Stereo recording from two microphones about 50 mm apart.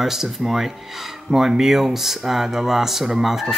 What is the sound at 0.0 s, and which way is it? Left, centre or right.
Speech, centre.